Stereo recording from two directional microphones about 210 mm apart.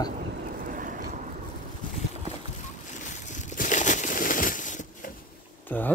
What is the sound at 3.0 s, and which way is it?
Crushing, 35° left (ahead or behind).